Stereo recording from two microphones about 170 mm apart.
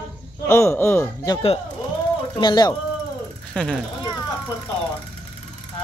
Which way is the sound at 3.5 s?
5° left (ahead or behind).